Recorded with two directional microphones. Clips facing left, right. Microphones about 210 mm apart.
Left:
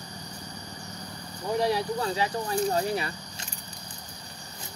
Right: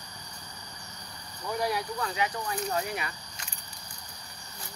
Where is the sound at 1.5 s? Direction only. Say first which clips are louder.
Left 5 dB; 25° left (ahead or behind).